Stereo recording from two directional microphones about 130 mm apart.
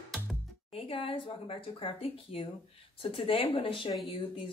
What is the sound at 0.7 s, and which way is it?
Speech, 45° left (ahead or behind).